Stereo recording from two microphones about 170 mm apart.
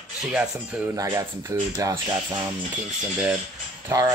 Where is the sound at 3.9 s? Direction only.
20° right (ahead or behind).